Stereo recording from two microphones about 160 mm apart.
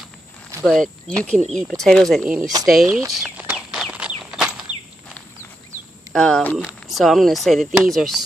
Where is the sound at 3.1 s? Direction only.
5° right (ahead or behind).